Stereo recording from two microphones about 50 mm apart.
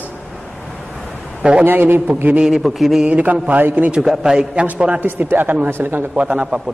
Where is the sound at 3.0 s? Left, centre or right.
Right.